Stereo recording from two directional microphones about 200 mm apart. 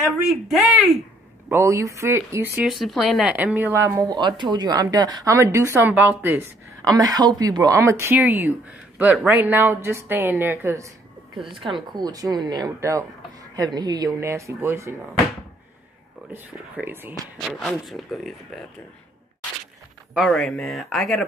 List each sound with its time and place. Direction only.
1.5 s speech: 15° right (ahead or behind)
2.5 s speech: centre (ahead or behind)
11.6 s speech: 25° right (ahead or behind)
16.7 s speech: 10° right (ahead or behind)
17.4 s speech: centre (ahead or behind)
20.2 s speech: centre (ahead or behind)